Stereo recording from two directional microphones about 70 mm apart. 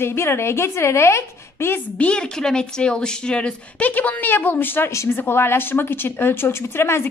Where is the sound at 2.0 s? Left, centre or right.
Centre.